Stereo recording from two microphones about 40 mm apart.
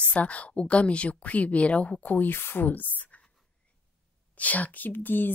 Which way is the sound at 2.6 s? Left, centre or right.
Left.